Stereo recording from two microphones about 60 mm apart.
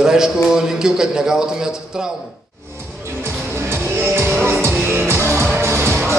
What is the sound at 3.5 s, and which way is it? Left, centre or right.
Music, right.